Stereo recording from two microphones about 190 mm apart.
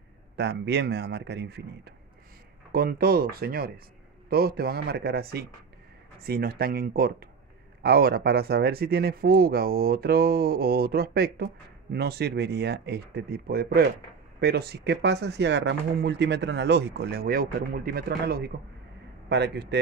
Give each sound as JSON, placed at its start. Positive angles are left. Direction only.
{"t": 0.4, "sound": "speech", "side_deg": -60}